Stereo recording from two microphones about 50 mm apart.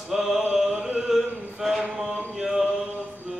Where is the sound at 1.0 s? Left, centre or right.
Centre.